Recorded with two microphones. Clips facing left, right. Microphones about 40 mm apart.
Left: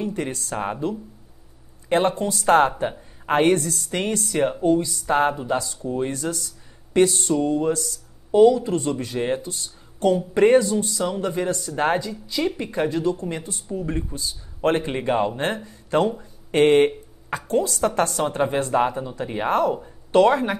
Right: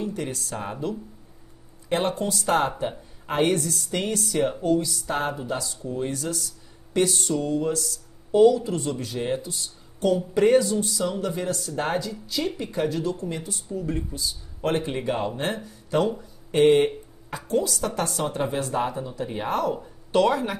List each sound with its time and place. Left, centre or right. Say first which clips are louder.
0.0 s speech: left 3 dB; left